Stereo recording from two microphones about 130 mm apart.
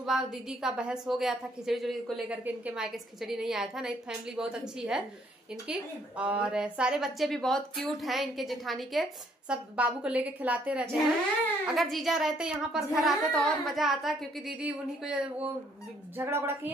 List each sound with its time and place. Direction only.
0.0 s a woman's voice: 5° right (ahead or behind)